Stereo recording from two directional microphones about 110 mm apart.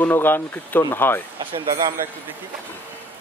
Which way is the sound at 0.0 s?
15° left (ahead or behind).